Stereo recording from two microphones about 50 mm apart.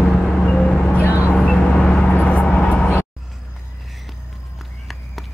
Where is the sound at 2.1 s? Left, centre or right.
Left.